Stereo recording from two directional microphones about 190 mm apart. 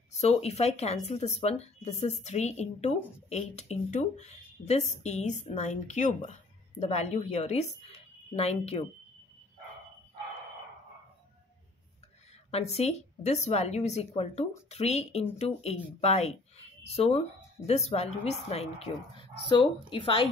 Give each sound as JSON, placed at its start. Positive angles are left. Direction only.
{"t": 0.1, "sound": "a woman's voice", "side_deg": 35}
{"t": 12.4, "sound": "a woman's voice", "side_deg": 35}